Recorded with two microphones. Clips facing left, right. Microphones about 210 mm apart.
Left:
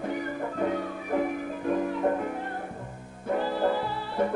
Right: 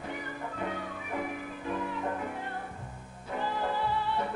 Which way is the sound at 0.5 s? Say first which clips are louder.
Left 8 dB; 45° left (ahead or behind).